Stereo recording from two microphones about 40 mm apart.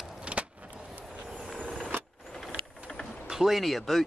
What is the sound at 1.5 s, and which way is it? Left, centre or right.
Vehicle, left.